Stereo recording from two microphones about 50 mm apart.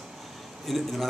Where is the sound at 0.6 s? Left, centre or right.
Centre.